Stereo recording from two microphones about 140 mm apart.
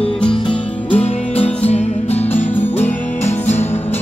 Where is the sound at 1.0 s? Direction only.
45° left (ahead or behind).